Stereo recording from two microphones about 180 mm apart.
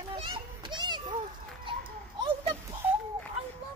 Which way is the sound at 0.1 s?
25° right (ahead or behind).